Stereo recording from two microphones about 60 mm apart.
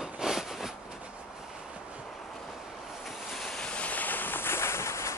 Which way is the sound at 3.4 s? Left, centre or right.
Centre.